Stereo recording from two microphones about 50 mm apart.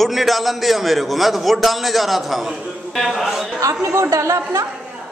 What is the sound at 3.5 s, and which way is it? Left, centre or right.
Speech, right.